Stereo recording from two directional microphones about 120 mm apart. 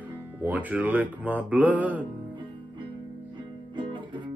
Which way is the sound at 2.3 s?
45° right (ahead or behind).